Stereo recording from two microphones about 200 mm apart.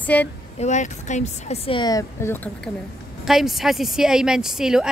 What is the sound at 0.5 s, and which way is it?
Speech, 35° left (ahead or behind).